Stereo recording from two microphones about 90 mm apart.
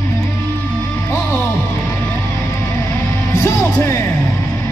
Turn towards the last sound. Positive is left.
turn(degrees=30)  # may be behind; listen again after turning